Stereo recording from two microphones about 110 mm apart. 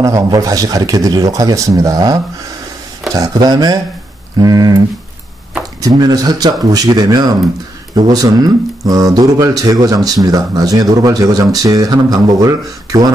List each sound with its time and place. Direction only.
0.0 s speech: 30° right (ahead or behind)
3.2 s speech: 35° right (ahead or behind)
5.8 s speech: 35° right (ahead or behind)